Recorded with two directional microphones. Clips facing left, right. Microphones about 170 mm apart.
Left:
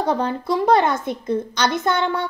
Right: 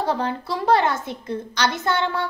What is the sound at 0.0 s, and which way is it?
A woman's voice, 20° left (ahead or behind).